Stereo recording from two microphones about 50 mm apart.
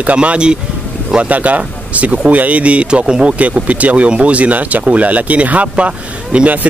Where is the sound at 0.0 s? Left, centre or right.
Right.